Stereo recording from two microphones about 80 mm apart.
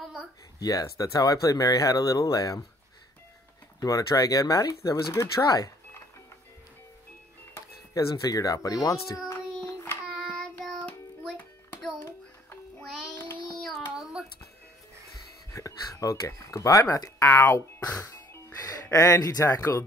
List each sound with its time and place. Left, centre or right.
0.6 s speech: left
3.8 s speech: left
7.9 s speech: left
10.1 s child singing: centre
13.1 s child singing: left
13.6 s child singing: centre
15.1 s a sound: left
17.2 s speech: left